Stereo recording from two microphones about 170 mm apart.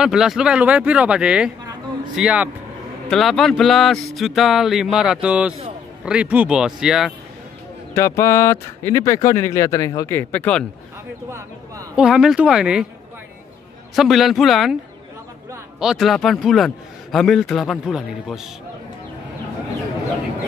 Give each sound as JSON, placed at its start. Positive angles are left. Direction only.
{"t": 0.0, "sound": "a man's voice", "side_deg": -5}
{"t": 7.9, "sound": "speech", "side_deg": 15}
{"t": 11.2, "sound": "speech", "side_deg": -15}
{"t": 11.9, "sound": "a man's voice", "side_deg": -5}
{"t": 13.9, "sound": "a man's voice", "side_deg": 0}
{"t": 15.8, "sound": "a man's voice", "side_deg": 0}